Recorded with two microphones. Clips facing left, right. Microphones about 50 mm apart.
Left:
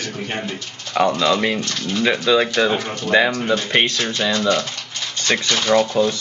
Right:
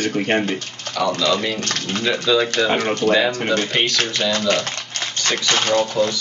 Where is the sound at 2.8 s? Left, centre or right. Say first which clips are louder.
Right 7 dB; right.